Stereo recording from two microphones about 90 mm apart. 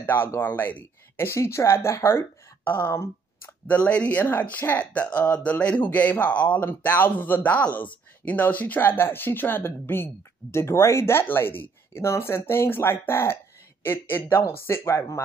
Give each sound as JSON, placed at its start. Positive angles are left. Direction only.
{"t": 0.0, "sound": "speech", "side_deg": 25}